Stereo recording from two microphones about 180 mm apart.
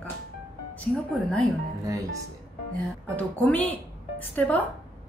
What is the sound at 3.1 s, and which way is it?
A woman's voice, 10° left (ahead or behind).